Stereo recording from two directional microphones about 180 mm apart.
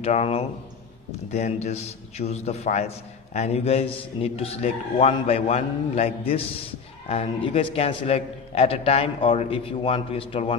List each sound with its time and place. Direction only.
0.0 s a man's voice: 35° left (ahead or behind)